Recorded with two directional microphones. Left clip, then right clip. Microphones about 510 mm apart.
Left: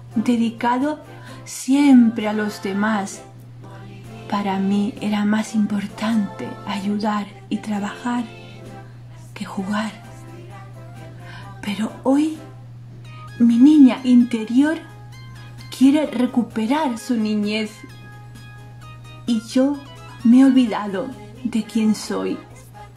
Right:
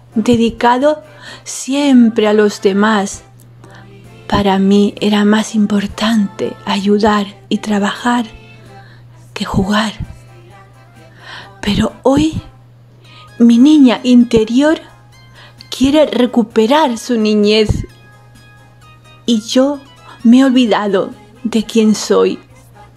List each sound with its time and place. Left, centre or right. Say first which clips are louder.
0.2 s a woman's voice: right 9 dB; centre
4.3 s a woman's voice: right 10 dB; centre
9.3 s a woman's voice: right 11 dB; centre
11.2 s music: right 11 dB; centre
12.0 s speech: right 6 dB; centre
13.4 s a woman's voice: right 5 dB; centre
19.2 s a woman's voice: right 8 dB; centre
19.8 s music: right 2 dB; centre
20.2 s a woman's voice: right 5 dB; centre